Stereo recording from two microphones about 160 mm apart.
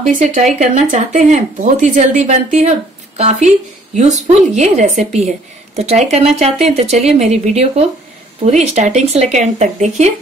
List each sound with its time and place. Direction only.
0.0 s speech: 50° right (ahead or behind)